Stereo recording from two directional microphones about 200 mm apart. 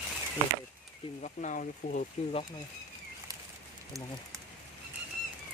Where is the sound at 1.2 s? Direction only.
40° left (ahead or behind).